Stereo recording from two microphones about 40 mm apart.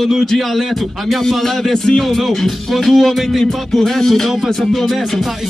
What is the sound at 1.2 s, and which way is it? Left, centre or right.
Music, centre.